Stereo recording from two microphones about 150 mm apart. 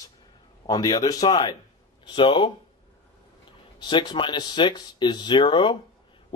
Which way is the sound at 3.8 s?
30° left (ahead or behind).